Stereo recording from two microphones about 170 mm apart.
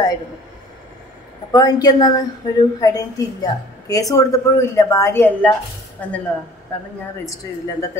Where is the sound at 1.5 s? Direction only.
25° left (ahead or behind).